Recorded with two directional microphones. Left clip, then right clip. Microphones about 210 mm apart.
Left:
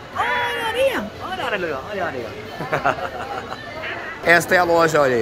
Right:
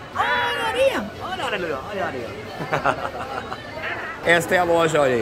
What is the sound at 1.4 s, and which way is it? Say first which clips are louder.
Speech: left 2 dB; 20° left (ahead or behind).